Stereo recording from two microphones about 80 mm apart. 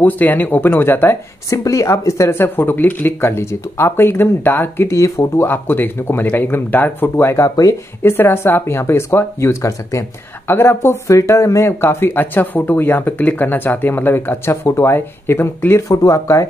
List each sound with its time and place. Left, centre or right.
0.0 s speech: left
1.5 s speech: left
5.4 s speech: left
7.4 s speech: left
8.0 s speech: left
10.5 s speech: left